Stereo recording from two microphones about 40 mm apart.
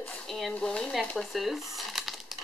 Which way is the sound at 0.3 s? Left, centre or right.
Centre.